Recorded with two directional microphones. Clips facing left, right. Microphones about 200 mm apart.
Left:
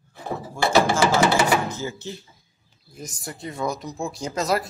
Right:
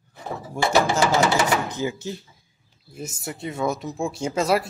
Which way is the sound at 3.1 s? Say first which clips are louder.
Right 2 dB; 25° right (ahead or behind).